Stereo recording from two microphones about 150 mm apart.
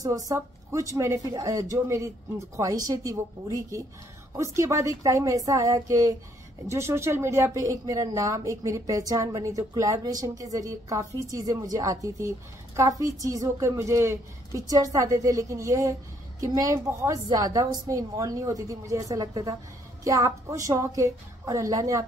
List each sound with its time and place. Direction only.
0.0 s speech: 25° right (ahead or behind)